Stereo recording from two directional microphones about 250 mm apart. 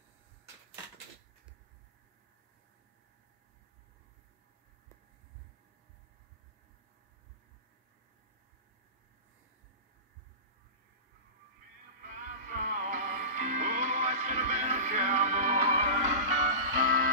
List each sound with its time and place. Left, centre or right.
12.0 s music: right